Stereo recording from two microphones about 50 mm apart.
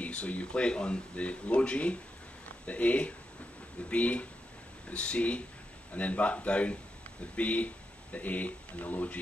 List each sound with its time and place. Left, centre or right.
0.0 s speech: left